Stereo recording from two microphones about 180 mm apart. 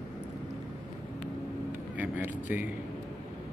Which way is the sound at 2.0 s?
10° right (ahead or behind).